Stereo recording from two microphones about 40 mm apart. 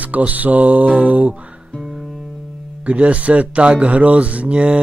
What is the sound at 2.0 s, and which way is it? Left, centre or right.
Music, centre.